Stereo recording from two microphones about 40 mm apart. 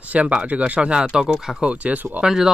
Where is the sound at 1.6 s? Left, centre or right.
Right.